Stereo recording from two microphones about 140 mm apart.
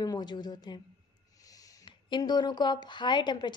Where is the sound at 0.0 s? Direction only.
30° left (ahead or behind).